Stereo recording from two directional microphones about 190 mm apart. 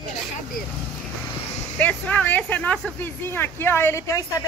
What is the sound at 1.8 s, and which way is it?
A man's voice, 10° left (ahead or behind).